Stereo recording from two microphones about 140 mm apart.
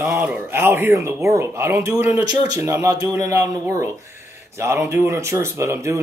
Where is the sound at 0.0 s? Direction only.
15° right (ahead or behind).